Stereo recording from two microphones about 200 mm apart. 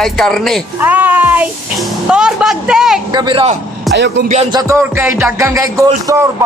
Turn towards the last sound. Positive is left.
turn(degrees=-15)  # may be behind; listen again after turning